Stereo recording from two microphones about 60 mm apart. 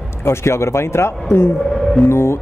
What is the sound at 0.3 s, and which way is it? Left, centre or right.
Speech, left.